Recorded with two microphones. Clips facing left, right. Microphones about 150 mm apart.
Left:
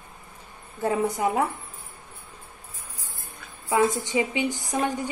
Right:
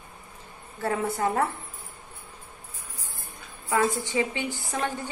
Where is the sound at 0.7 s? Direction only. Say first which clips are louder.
Left 3 dB; 20° left (ahead or behind).